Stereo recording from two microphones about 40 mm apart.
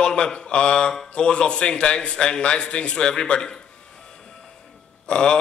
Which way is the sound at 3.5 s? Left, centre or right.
Centre.